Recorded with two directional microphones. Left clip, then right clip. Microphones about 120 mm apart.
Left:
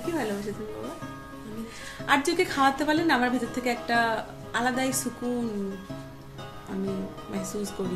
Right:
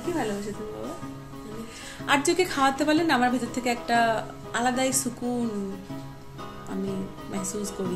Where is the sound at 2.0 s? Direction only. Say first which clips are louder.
Right 1 dB; 25° right (ahead or behind).